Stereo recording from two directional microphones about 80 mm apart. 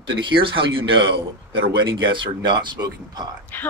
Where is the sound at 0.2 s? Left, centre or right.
Right.